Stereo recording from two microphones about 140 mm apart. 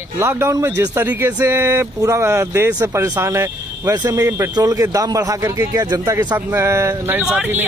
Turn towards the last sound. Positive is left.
turn(degrees=-5)  # may be behind; listen again after turning